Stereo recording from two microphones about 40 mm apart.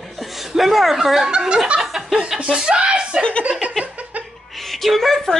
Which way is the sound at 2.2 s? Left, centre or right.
Centre.